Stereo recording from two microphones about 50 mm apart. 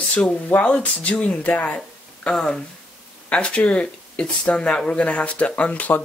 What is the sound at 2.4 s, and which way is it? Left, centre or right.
Speech, centre.